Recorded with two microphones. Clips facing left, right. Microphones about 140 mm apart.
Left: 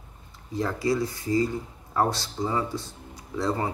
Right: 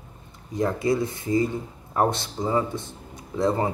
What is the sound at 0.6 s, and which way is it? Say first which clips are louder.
Speech: right 2 dB; 20° right (ahead or behind).